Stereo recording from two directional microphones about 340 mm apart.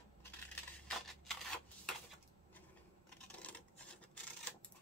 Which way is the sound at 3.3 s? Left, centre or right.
Centre.